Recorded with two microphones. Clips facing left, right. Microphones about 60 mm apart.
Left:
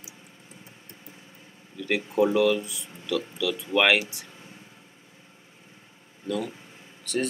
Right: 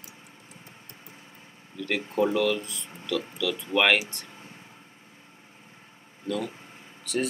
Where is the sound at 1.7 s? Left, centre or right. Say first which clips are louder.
Left 2 dB; centre.